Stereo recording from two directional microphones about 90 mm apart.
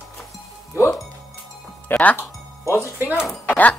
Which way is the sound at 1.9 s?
15° left (ahead or behind).